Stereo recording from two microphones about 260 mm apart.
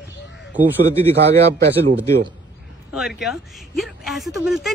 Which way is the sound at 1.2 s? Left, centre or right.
Right.